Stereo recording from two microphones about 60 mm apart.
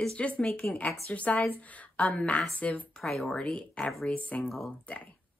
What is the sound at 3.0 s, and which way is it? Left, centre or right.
A woman's voice, centre.